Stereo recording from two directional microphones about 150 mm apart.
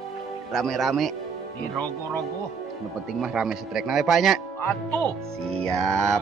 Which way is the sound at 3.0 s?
5° right (ahead or behind).